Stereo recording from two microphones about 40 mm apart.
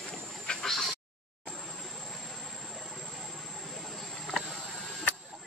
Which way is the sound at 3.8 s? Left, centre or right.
Centre.